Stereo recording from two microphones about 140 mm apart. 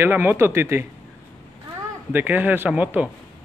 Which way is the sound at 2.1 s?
15° right (ahead or behind).